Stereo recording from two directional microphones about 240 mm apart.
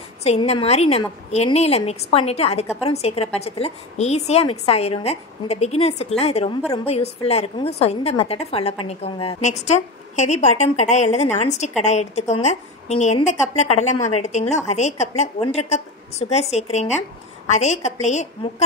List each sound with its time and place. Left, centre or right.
0.2 s a woman's voice: left